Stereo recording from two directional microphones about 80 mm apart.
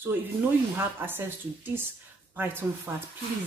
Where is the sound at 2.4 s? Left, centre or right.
Right.